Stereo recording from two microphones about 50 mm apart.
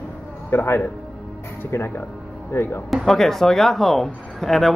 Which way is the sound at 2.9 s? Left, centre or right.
Centre.